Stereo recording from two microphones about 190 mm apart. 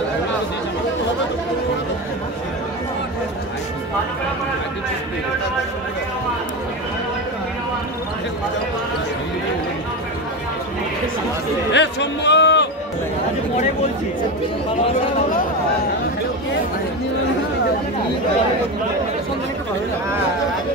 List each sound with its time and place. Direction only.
11.7 s music: 70° left (ahead or behind)